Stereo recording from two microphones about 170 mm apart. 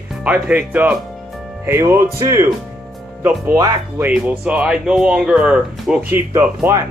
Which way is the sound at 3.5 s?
20° right (ahead or behind).